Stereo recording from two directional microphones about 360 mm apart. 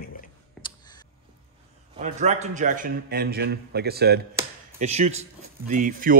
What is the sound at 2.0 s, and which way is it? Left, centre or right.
Speech, centre.